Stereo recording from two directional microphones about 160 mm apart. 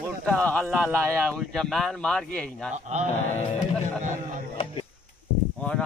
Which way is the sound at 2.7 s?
45° right (ahead or behind).